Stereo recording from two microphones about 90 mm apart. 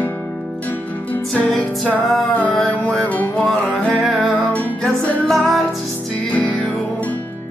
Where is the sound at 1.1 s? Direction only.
15° left (ahead or behind).